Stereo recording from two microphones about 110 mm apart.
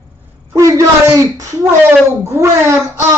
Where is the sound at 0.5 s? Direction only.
30° right (ahead or behind).